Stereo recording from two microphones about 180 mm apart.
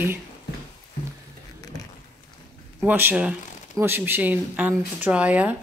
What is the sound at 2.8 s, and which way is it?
Speech, 10° right (ahead or behind).